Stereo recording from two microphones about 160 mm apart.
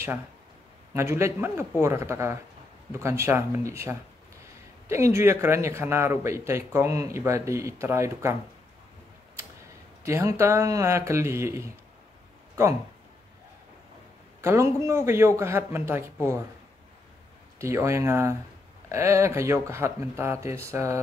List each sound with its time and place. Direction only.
0.9 s speech: 15° right (ahead or behind)
10.0 s speech: 15° right (ahead or behind)
14.4 s speech: 15° right (ahead or behind)
17.6 s speech: 15° right (ahead or behind)